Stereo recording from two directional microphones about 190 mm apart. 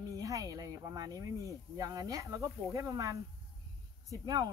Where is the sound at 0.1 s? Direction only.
20° right (ahead or behind).